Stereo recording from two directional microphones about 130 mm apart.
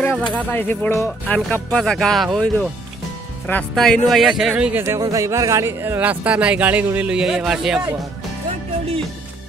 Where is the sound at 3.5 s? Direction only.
5° left (ahead or behind).